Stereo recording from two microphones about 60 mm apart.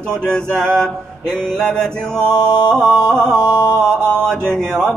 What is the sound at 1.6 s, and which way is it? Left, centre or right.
Speech, centre.